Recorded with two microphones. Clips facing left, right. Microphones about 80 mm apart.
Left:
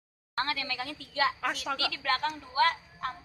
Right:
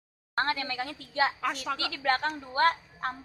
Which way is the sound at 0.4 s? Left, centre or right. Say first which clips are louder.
Right 3 dB; right.